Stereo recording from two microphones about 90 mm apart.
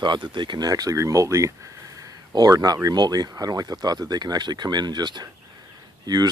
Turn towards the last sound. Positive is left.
turn(degrees=-50)  # may be behind; listen again after turning